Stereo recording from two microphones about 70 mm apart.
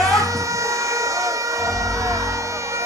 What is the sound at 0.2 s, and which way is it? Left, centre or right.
Vehicle, right.